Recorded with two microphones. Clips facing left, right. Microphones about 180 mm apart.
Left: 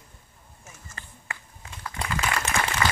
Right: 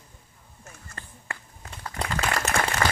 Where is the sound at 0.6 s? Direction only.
60° right (ahead or behind).